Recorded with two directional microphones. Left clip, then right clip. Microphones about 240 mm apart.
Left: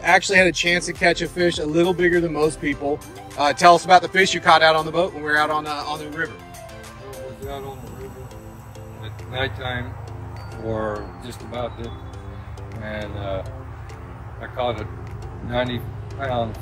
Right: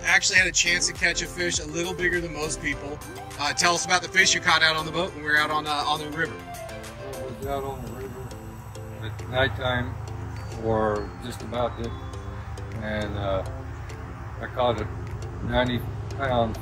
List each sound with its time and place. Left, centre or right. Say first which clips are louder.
0.0 s a man's voice: left 5 dB; centre
7.1 s music: right 2 dB; centre
9.3 s speech: right 2 dB; centre